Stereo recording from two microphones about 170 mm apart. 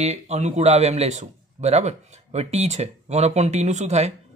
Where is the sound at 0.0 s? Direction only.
40° right (ahead or behind).